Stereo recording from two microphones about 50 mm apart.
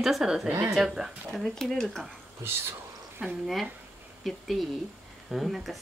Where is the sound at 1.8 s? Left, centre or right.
Centre.